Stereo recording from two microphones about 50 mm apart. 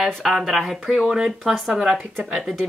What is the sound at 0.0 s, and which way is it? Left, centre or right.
Speech, centre.